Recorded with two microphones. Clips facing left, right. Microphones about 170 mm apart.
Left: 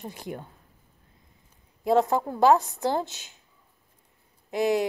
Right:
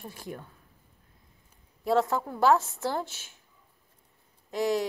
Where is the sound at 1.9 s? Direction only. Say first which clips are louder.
Left 3 dB; 15° left (ahead or behind).